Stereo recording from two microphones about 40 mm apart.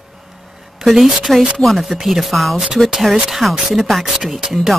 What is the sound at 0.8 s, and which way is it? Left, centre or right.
Speech, centre.